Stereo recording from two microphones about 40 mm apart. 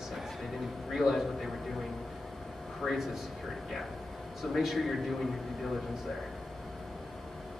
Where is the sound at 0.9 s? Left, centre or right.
Centre.